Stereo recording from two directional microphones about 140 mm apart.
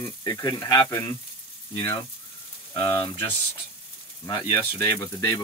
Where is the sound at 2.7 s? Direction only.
35° left (ahead or behind).